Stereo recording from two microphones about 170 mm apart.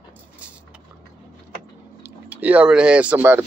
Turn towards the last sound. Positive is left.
turn(degrees=-10)  # may be behind; listen again after turning